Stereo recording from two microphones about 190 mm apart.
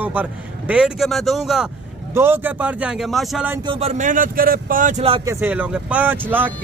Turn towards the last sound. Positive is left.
turn(degrees=-10)  # may be behind; listen again after turning